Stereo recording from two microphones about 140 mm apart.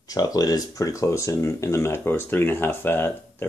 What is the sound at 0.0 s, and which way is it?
Speech, 25° left (ahead or behind).